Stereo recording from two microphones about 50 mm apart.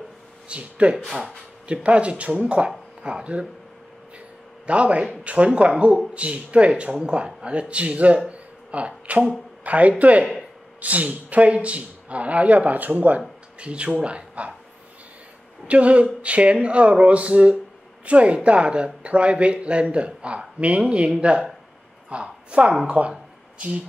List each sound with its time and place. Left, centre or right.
0.5 s speech: right
4.6 s speech: right
8.3 s a sound: right
9.6 s speech: right
13.6 s speech: right
15.6 s a woman's voice: right